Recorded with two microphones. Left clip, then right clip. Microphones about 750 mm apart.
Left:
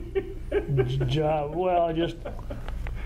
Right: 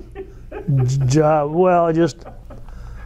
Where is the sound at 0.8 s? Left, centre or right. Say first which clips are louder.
Right 10 dB; right.